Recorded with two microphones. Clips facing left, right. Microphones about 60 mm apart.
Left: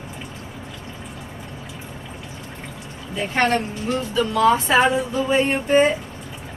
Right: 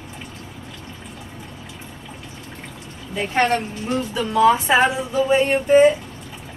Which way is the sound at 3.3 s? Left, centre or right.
Centre.